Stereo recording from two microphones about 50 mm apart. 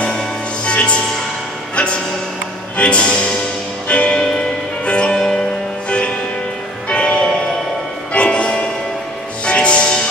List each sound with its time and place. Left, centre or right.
0.7 s music: left
2.8 s speech: left
3.9 s music: centre